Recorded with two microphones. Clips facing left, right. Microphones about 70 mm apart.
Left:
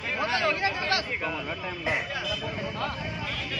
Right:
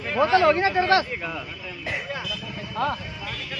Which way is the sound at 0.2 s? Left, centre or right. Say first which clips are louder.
Right 9 dB; right.